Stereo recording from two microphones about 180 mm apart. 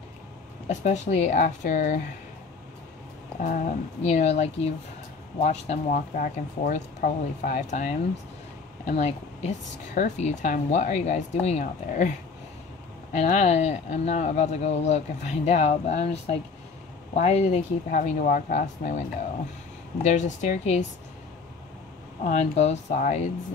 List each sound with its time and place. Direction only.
0.7 s speech: 40° left (ahead or behind)
3.4 s speech: 45° left (ahead or behind)
13.1 s speech: 40° left (ahead or behind)
22.2 s speech: 40° left (ahead or behind)